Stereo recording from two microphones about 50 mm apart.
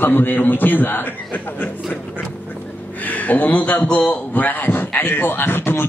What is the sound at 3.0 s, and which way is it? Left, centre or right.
A man's voice, left.